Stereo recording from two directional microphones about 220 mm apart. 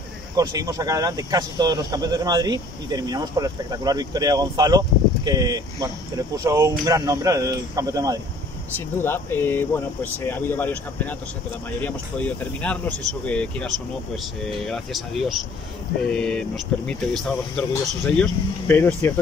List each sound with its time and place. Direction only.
0.4 s speech: 15° right (ahead or behind)
8.9 s speech: 10° left (ahead or behind)